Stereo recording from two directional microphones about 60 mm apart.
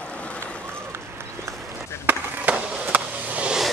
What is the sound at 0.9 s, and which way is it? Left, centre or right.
Run, right.